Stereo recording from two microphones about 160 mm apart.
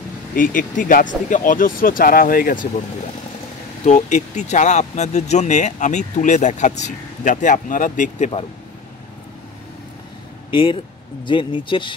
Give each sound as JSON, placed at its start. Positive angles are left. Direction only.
{"t": 0.4, "sound": "speech", "side_deg": 60}
{"t": 3.8, "sound": "speech", "side_deg": 45}
{"t": 10.5, "sound": "speech", "side_deg": 30}